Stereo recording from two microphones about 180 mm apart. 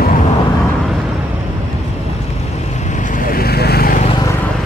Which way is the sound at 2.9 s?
50° left (ahead or behind).